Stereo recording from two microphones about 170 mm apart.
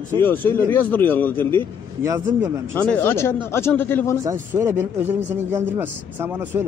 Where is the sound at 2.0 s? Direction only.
15° right (ahead or behind).